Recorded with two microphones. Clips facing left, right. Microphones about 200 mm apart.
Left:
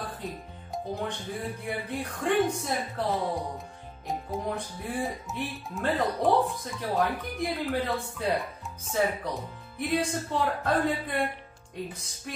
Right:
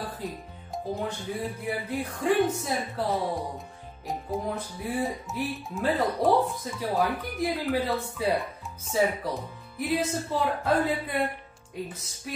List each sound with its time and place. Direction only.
0.9 s speech: centre (ahead or behind)